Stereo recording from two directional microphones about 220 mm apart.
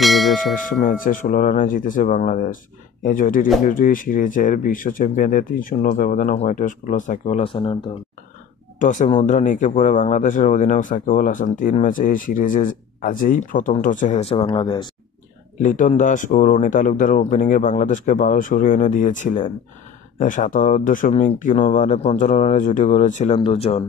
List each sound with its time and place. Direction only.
0.0 s bell: centre (ahead or behind)
0.7 s speech: 35° left (ahead or behind)
8.7 s speech: 35° left (ahead or behind)
15.6 s speech: 35° left (ahead or behind)